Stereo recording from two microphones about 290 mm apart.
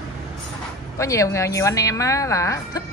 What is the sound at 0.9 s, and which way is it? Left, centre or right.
A woman's voice, centre.